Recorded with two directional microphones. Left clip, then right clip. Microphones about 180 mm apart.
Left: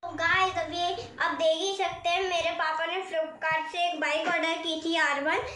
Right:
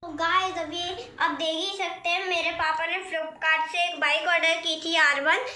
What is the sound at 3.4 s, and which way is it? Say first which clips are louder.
A woman's voice: right 6 dB; 5° left (ahead or behind).